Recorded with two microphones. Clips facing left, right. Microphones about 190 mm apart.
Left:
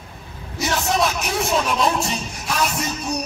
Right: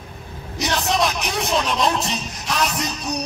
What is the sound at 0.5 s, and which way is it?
Vehicle, 20° right (ahead or behind).